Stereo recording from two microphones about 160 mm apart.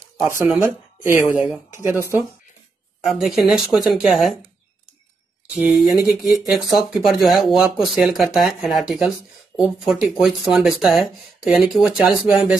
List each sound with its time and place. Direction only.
0.5 s speech: 10° right (ahead or behind)
1.2 s speech: 5° right (ahead or behind)
1.7 s speech: 15° right (ahead or behind)
3.1 s speech: centre (ahead or behind)
5.5 s speech: 5° right (ahead or behind)